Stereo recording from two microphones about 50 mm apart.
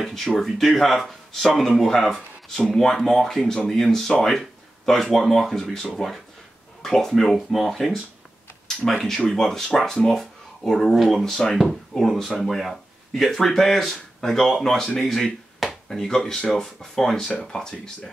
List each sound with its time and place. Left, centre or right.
0.0 s speech: centre